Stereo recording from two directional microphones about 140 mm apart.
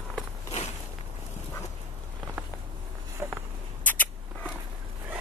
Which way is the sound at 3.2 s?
15° right (ahead or behind).